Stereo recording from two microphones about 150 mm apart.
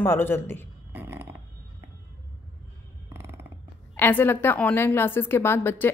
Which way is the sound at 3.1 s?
15° right (ahead or behind).